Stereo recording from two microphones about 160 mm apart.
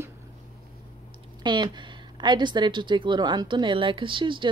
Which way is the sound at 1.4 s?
30° right (ahead or behind).